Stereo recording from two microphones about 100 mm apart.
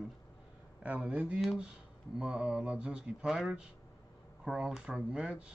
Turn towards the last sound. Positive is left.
turn(degrees=-10)  # may be behind; listen again after turning